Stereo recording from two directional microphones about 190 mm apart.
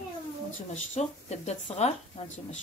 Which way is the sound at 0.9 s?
35° left (ahead or behind).